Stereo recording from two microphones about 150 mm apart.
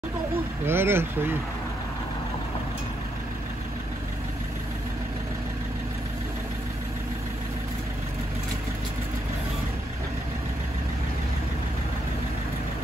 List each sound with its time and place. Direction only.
0.7 s speech: 15° right (ahead or behind)